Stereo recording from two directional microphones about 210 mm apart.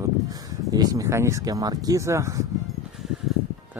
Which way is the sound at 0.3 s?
20° right (ahead or behind).